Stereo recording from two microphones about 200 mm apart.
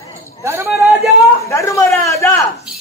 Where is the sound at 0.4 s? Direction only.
10° right (ahead or behind).